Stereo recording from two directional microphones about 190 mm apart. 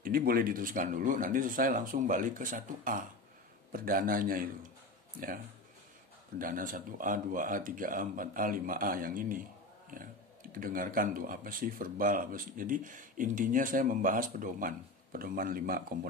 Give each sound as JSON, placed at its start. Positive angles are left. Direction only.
{"t": 0.0, "sound": "speech", "side_deg": -50}
{"t": 6.3, "sound": "speech", "side_deg": -45}
{"t": 10.5, "sound": "speech", "side_deg": -45}